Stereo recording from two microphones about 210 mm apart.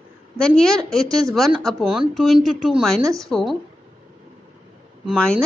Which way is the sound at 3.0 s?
15° right (ahead or behind).